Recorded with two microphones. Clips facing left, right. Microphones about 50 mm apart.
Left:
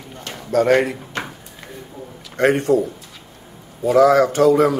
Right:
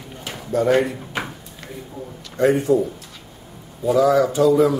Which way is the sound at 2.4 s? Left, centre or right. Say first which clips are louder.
Left 1 dB; left.